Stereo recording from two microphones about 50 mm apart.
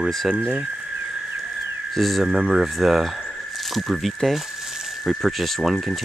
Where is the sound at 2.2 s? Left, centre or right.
Centre.